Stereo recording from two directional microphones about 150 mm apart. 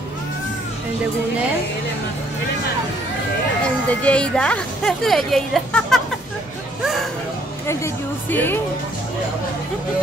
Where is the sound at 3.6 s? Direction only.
10° left (ahead or behind).